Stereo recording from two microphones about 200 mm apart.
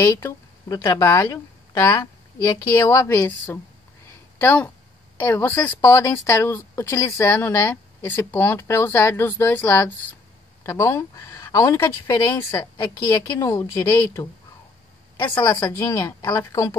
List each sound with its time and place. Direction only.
0.0 s a woman's voice: 15° left (ahead or behind)
15.1 s a woman's voice: 20° left (ahead or behind)